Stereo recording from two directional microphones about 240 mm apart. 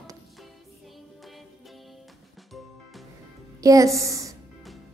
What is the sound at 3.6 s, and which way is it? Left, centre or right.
Speech, centre.